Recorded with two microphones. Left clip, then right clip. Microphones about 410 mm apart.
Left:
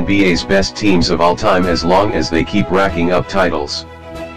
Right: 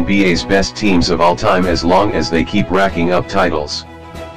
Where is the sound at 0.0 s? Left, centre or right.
Centre.